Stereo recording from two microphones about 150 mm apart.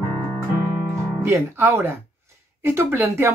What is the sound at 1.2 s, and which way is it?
Speech, 15° right (ahead or behind).